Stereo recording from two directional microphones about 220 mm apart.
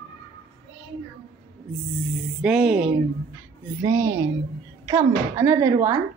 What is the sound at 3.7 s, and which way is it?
Speech, 15° right (ahead or behind).